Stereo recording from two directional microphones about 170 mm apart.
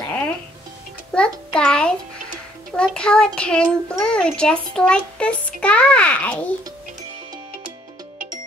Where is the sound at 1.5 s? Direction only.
5° left (ahead or behind).